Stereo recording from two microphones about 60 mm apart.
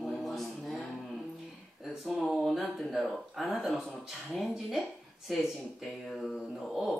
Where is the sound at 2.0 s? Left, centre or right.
Centre.